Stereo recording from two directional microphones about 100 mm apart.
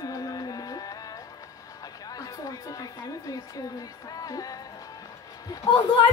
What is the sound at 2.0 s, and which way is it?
A woman's voice, 40° left (ahead or behind).